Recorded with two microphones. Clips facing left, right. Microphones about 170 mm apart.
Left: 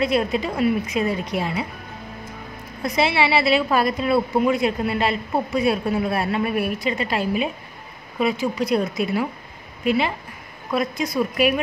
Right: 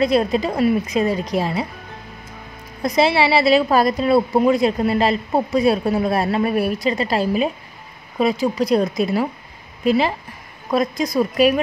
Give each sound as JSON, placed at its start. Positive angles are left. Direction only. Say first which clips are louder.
{"t": 0.0, "sound": "a woman's voice", "louder": "right 4 dB", "side_deg": -35}
{"t": 2.8, "sound": "a woman's voice", "louder": "right 4 dB", "side_deg": -35}